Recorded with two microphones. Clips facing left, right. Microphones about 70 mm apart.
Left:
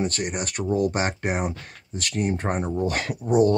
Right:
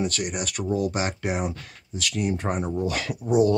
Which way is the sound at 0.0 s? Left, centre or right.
Left.